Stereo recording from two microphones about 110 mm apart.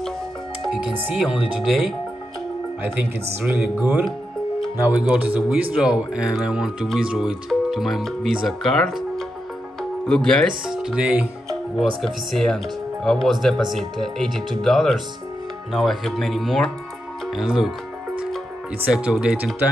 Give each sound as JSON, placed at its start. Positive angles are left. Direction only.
{"t": 1.1, "sound": "speech", "side_deg": -5}
{"t": 3.4, "sound": "speech", "side_deg": -10}
{"t": 18.9, "sound": "speech", "side_deg": -10}